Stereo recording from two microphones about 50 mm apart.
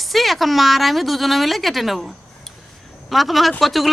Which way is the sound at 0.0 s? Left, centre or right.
Centre.